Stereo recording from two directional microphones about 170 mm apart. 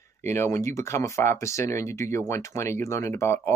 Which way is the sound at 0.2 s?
15° left (ahead or behind).